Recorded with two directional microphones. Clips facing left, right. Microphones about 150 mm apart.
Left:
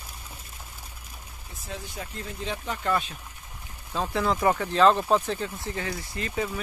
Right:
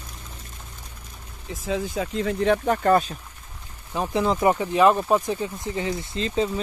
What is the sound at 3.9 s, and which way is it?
Speech, 15° right (ahead or behind).